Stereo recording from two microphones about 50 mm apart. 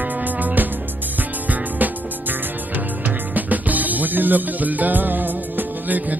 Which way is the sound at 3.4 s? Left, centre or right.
Right.